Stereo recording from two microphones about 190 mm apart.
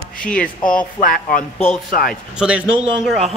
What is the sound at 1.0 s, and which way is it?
Speech, 45° left (ahead or behind).